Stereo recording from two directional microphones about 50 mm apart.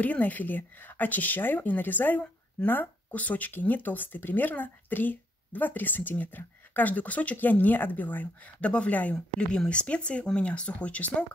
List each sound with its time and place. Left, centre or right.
0.0 s speech: left
9.1 s speech: centre